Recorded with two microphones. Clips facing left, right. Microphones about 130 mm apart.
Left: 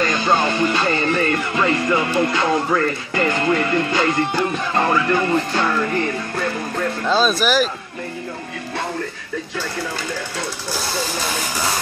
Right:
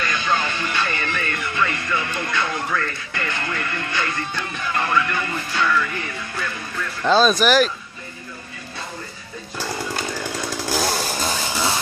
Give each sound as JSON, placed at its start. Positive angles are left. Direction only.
{"t": 0.0, "sound": "music", "side_deg": 40}
{"t": 0.3, "sound": "music", "side_deg": 25}
{"t": 3.4, "sound": "speech", "side_deg": 25}
{"t": 4.4, "sound": "music", "side_deg": 35}
{"t": 7.1, "sound": "speech", "side_deg": 0}